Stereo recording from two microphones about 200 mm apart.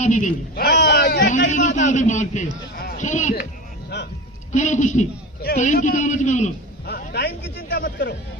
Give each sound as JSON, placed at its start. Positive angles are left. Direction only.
{"t": 0.0, "sound": "a man's voice", "side_deg": 35}
{"t": 0.6, "sound": "a man's voice", "side_deg": 55}
{"t": 4.5, "sound": "a man's voice", "side_deg": 35}
{"t": 6.9, "sound": "speech", "side_deg": 55}